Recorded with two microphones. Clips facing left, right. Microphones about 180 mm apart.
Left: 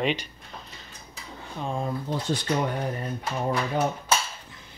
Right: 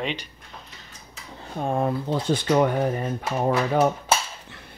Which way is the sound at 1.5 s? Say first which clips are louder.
Right 6 dB; 55° right (ahead or behind).